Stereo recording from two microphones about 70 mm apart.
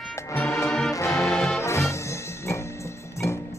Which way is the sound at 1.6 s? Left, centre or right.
Left.